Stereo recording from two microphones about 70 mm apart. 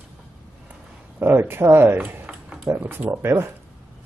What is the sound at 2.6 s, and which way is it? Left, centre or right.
Speech, right.